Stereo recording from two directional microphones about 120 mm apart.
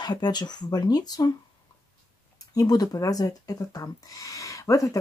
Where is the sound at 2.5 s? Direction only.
35° left (ahead or behind).